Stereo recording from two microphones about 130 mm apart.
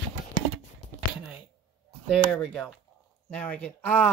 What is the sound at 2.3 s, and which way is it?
Speech, 5° left (ahead or behind).